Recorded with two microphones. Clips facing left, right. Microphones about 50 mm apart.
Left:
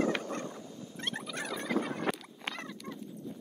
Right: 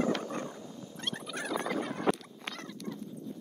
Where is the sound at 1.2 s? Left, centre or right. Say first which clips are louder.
Right 3 dB; centre.